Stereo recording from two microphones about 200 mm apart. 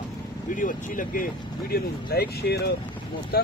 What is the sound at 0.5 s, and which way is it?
Speech, 40° left (ahead or behind).